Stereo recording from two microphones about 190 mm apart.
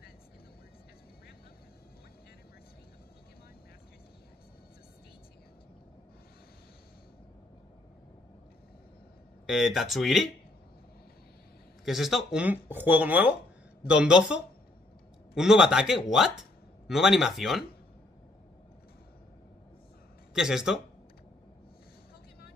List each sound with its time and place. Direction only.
9.5 s speech: centre (ahead or behind)
11.8 s speech: centre (ahead or behind)
20.3 s speech: 5° right (ahead or behind)